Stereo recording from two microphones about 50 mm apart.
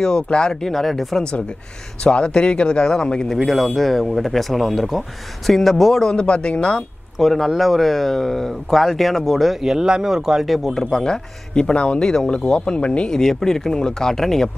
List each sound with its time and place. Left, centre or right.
0.0 s speech: centre
2.0 s speech: centre
3.3 s speech: centre
6.1 s speech: left
7.2 s speech: centre
10.8 s speech: centre
13.2 s speech: centre